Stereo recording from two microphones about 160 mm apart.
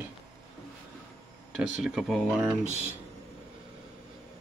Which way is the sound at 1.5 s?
Centre (ahead or behind).